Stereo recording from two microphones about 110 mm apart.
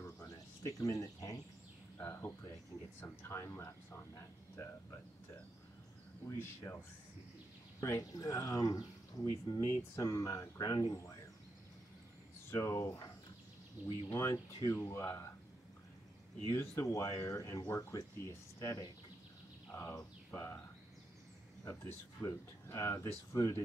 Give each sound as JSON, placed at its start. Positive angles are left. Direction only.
{"t": 0.0, "sound": "a sound", "side_deg": 35}
{"t": 2.0, "sound": "speech", "side_deg": 20}
{"t": 6.2, "sound": "speech", "side_deg": 25}
{"t": 7.8, "sound": "speech", "side_deg": 30}
{"t": 12.4, "sound": "speech", "side_deg": 25}
{"t": 14.0, "sound": "speech", "side_deg": 25}
{"t": 16.5, "sound": "speech", "side_deg": 30}
{"t": 20.0, "sound": "speech", "side_deg": 20}
{"t": 21.6, "sound": "speech", "side_deg": 25}